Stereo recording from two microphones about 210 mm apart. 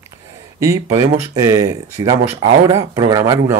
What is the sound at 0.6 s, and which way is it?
Speech, 15° right (ahead or behind).